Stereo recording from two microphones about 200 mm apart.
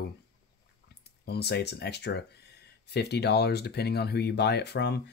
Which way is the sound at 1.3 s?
55° left (ahead or behind).